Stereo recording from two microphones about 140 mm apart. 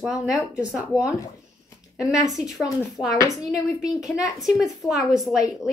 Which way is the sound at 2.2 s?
Centre (ahead or behind).